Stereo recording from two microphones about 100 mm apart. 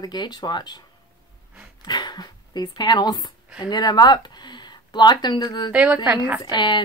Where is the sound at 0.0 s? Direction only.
45° left (ahead or behind).